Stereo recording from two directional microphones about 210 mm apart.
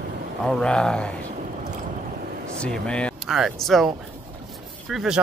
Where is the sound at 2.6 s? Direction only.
5° left (ahead or behind).